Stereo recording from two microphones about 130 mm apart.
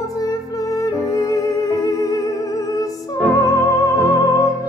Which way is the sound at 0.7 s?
25° left (ahead or behind).